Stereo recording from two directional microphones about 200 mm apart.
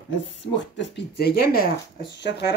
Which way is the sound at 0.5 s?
60° left (ahead or behind).